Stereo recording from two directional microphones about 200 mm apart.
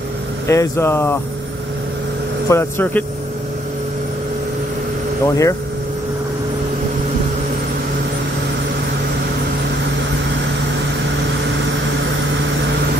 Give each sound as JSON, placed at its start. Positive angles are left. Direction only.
{"t": 0.5, "sound": "speech", "side_deg": 15}
{"t": 2.5, "sound": "speech", "side_deg": 10}
{"t": 5.2, "sound": "speech", "side_deg": 15}